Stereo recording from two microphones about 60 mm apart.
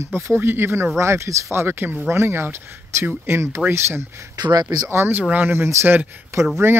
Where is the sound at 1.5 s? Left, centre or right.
Right.